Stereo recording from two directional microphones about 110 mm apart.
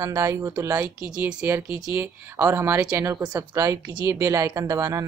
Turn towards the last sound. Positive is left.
turn(degrees=-30)  # may be behind; listen again after turning